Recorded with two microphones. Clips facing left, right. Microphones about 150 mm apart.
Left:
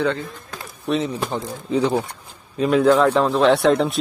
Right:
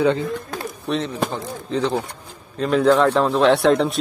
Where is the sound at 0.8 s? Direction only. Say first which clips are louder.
Left 2 dB; centre (ahead or behind).